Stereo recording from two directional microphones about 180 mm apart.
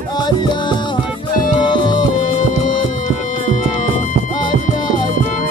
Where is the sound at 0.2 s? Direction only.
25° left (ahead or behind).